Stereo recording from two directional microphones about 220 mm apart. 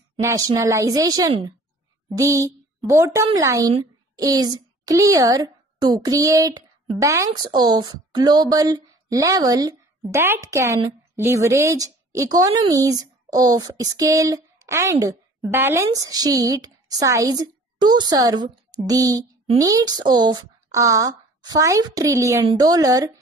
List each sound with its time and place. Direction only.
0.2 s a child's voice: 15° right (ahead or behind)